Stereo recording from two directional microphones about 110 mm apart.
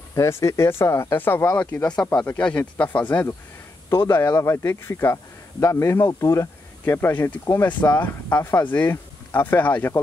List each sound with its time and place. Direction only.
0.1 s speech: 25° left (ahead or behind)
6.8 s speech: 20° left (ahead or behind)